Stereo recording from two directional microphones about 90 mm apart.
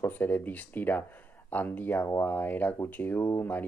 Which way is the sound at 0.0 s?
20° left (ahead or behind).